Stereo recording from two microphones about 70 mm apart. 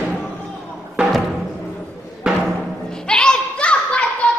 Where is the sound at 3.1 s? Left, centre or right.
Centre.